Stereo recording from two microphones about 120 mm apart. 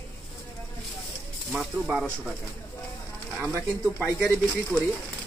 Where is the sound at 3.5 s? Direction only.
15° left (ahead or behind).